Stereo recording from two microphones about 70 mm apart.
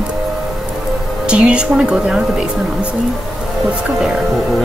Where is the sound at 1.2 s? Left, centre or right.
Centre.